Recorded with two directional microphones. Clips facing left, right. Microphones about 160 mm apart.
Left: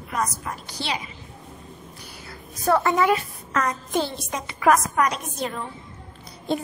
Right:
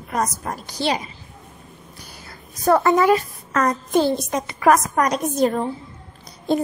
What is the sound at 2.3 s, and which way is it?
A woman's voice, 40° right (ahead or behind).